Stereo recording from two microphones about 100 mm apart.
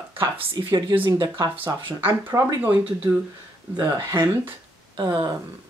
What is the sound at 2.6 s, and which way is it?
Speech, 15° right (ahead or behind).